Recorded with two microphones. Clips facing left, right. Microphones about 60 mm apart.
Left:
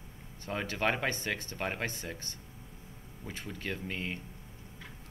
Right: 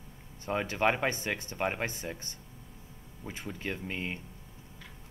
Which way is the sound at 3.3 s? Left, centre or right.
Right.